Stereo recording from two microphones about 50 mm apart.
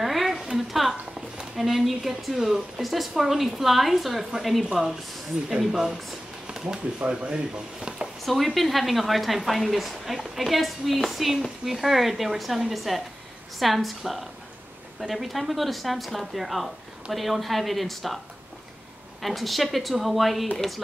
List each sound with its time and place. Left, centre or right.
0.0 s a sound: centre
1.4 s speech: centre
6.4 s a sound: centre
7.1 s speech: right
8.3 s speech: centre
19.2 s speech: centre